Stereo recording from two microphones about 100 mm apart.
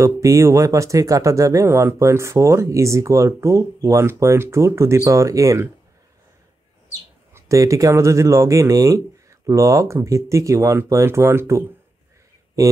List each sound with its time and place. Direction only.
0.0 s speech: 30° right (ahead or behind)
7.3 s speech: 30° right (ahead or behind)